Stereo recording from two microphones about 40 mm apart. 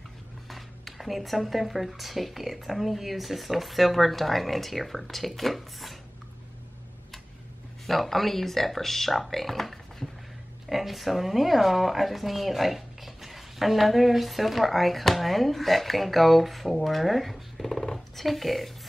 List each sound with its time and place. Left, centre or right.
0.5 s speech: centre
7.8 s speech: centre